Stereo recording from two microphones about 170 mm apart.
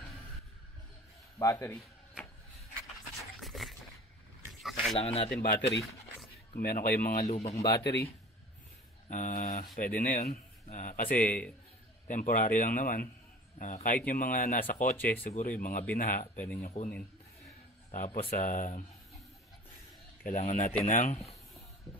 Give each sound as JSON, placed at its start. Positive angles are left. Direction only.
{"t": 1.4, "sound": "speech", "side_deg": 20}
{"t": 3.3, "sound": "a sound", "side_deg": 0}
{"t": 4.9, "sound": "speech", "side_deg": 35}
{"t": 5.3, "sound": "speech", "side_deg": 70}
{"t": 6.5, "sound": "speech", "side_deg": 60}
{"t": 7.2, "sound": "speech", "side_deg": 40}
{"t": 7.8, "sound": "speech", "side_deg": 80}
{"t": 9.1, "sound": "speech", "side_deg": 45}
{"t": 20.2, "sound": "speech", "side_deg": 45}